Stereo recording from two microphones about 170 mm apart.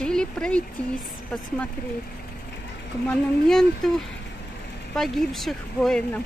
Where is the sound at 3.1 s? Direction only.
5° left (ahead or behind).